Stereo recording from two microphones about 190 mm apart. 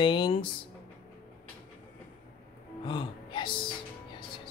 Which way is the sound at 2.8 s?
25° left (ahead or behind).